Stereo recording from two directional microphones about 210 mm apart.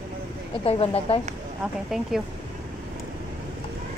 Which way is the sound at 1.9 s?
Centre (ahead or behind).